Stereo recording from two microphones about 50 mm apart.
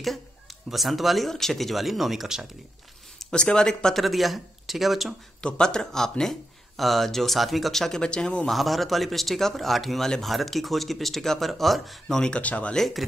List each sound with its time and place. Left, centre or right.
0.7 s a man's voice: centre
3.2 s speech: centre
4.0 s a man's voice: centre
5.4 s a man's voice: centre
8.5 s a man's voice: centre
12.2 s speech: left
12.7 s a man's voice: centre